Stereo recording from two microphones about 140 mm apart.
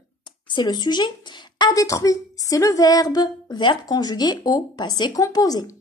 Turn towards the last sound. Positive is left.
turn(degrees=25)  # may be behind; listen again after turning